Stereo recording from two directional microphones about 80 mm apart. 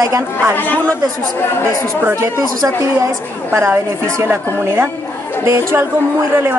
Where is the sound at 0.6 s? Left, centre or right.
Left.